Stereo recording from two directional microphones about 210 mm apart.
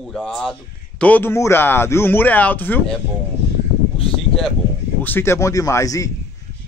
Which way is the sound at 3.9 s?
25° left (ahead or behind).